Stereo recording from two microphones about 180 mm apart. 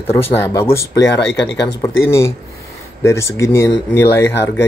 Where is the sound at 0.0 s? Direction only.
15° left (ahead or behind).